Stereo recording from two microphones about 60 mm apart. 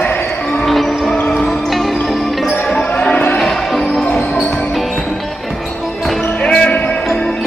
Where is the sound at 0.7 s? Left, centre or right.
Centre.